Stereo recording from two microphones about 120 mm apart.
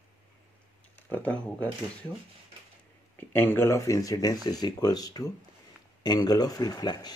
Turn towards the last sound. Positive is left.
turn(degrees=35)  # may be behind; listen again after turning